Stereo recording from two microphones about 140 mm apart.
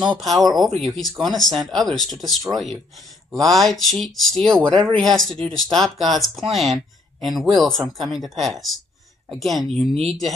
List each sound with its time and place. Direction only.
0.2 s speech: centre (ahead or behind)